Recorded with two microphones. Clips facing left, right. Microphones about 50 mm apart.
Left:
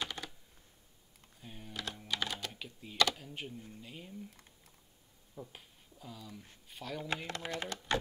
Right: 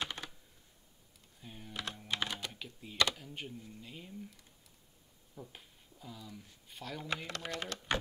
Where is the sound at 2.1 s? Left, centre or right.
Centre.